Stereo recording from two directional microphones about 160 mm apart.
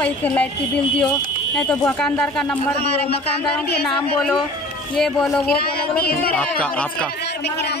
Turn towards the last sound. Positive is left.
turn(degrees=10)  # may be behind; listen again after turning